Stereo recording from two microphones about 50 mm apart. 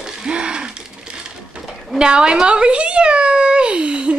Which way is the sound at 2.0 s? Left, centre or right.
Centre.